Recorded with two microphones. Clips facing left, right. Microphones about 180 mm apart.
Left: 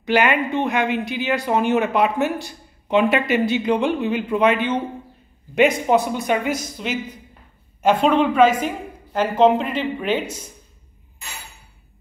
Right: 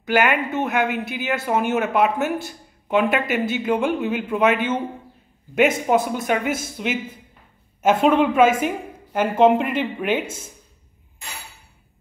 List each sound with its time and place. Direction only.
0.0 s a man's voice: 5° right (ahead or behind)
10.2 s speech: 25° right (ahead or behind)